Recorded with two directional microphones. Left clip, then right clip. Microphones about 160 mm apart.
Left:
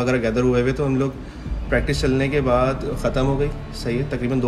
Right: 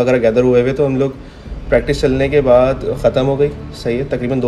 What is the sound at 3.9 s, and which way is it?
Speech, 15° left (ahead or behind).